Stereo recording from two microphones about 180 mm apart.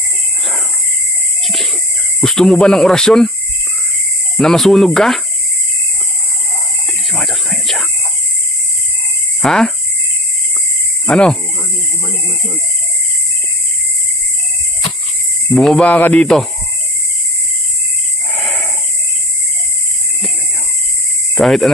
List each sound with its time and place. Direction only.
1.4 s a sound: centre (ahead or behind)
2.1 s speech: centre (ahead or behind)
4.4 s speech: centre (ahead or behind)
6.9 s whispering: centre (ahead or behind)
9.4 s speech: centre (ahead or behind)
11.1 s speech: 5° left (ahead or behind)
15.5 s speech: centre (ahead or behind)
18.3 s a sound: centre (ahead or behind)
21.4 s speech: centre (ahead or behind)